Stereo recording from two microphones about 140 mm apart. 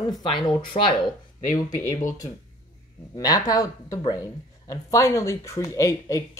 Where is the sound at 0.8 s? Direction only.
50° left (ahead or behind).